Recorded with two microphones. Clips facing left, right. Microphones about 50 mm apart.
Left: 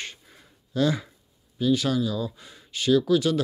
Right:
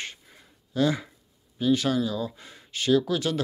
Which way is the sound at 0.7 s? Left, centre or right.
Centre.